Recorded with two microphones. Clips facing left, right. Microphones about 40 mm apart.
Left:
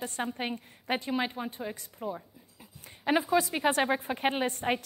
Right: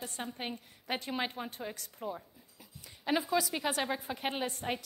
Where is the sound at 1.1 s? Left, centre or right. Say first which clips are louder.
Left 5 dB; centre.